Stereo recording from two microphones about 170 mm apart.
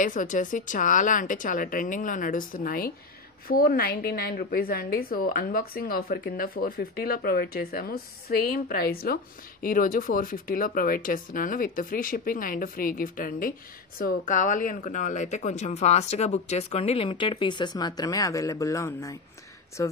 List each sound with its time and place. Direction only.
0.0 s a woman's voice: 50° left (ahead or behind); by 19.9 s 20° left (ahead or behind)